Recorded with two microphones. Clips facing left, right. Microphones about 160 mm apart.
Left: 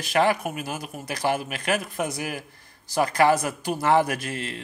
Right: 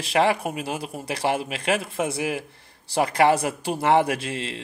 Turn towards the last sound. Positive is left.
turn(degrees=-25)  # may be behind; listen again after turning